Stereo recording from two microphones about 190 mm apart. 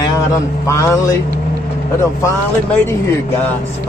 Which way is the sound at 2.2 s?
15° left (ahead or behind).